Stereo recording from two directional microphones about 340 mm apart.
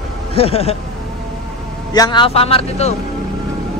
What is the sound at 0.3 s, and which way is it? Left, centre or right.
Speech, centre.